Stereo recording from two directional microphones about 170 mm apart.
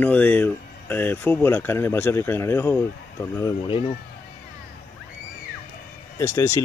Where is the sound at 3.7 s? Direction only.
35° left (ahead or behind).